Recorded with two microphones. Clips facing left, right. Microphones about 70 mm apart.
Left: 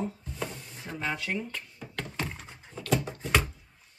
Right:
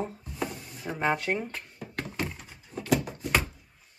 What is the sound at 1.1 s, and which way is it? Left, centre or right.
Speech, right.